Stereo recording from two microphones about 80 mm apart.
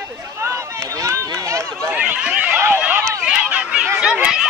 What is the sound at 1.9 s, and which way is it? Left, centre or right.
Run, centre.